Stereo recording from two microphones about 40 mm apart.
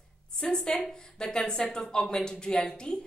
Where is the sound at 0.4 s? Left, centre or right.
Centre.